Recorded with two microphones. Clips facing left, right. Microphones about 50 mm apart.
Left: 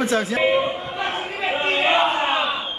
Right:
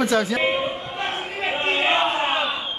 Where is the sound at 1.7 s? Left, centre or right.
Centre.